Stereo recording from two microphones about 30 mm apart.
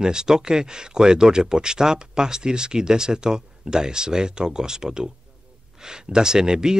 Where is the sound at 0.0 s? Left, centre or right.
Right.